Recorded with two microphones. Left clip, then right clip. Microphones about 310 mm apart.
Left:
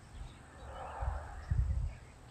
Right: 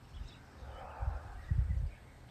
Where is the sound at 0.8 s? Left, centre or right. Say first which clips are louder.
Left 4 dB; left.